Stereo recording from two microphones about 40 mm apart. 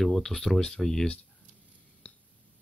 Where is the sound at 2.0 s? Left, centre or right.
Left.